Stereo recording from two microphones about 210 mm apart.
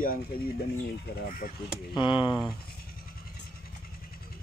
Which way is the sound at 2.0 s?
25° left (ahead or behind).